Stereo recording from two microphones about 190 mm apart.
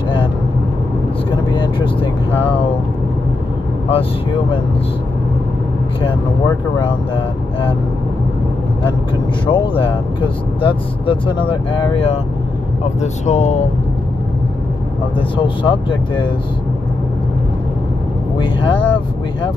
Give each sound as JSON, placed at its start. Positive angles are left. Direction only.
{"t": 1.3, "sound": "vehicle", "side_deg": 25}
{"t": 3.9, "sound": "speech", "side_deg": 25}
{"t": 6.0, "sound": "speech", "side_deg": 25}
{"t": 8.8, "sound": "speech", "side_deg": 25}
{"t": 15.1, "sound": "speech", "side_deg": 25}
{"t": 18.4, "sound": "speech", "side_deg": 25}